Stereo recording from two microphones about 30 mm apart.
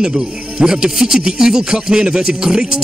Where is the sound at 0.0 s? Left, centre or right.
Right.